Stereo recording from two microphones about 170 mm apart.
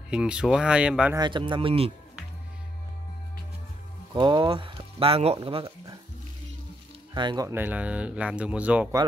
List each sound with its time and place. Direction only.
0.1 s speech: 5° right (ahead or behind)
1.1 s speech: 25° right (ahead or behind)
4.1 s speech: 30° right (ahead or behind)
7.2 s speech: 25° right (ahead or behind); by 8.8 s 5° right (ahead or behind)